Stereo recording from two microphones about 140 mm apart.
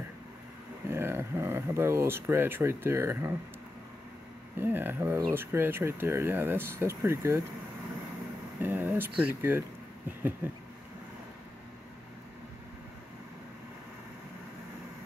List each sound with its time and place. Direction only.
0.8 s speech: 15° right (ahead or behind)
4.6 s speech: 15° right (ahead or behind)
8.5 s speech: 15° right (ahead or behind)
9.4 s a sound: 15° right (ahead or behind)